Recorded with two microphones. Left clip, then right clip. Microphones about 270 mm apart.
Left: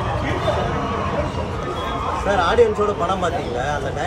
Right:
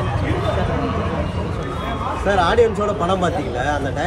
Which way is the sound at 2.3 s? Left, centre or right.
Right.